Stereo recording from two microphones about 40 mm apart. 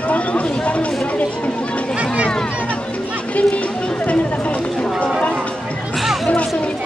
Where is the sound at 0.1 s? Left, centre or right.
Left.